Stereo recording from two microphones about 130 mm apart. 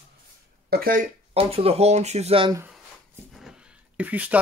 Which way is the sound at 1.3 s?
50° right (ahead or behind).